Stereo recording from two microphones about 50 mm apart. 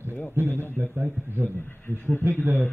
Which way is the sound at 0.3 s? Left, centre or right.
Right.